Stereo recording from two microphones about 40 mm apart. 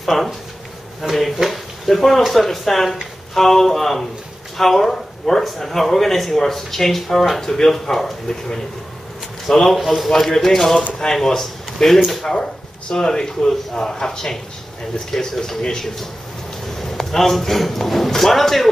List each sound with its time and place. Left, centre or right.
0.0 s speech: centre
12.9 s speech: centre
16.7 s a man's voice: centre